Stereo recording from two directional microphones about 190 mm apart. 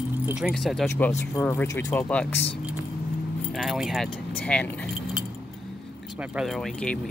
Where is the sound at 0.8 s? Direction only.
10° left (ahead or behind).